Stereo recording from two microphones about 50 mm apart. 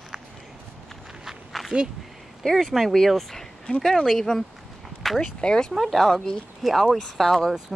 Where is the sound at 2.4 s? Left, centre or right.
Centre.